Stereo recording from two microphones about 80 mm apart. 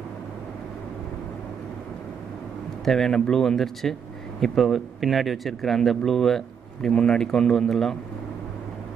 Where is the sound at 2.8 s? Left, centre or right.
Centre.